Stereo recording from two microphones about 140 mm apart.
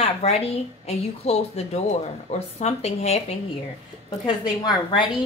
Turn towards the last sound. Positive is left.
turn(degrees=35)  # may be behind; listen again after turning